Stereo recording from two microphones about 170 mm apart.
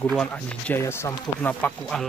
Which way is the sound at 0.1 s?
5° left (ahead or behind).